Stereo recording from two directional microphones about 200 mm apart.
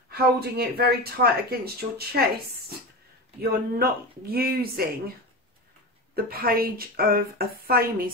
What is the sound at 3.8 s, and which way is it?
Speech, 50° right (ahead or behind).